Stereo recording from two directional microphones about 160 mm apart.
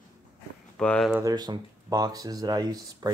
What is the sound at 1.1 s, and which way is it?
Speech, 25° right (ahead or behind).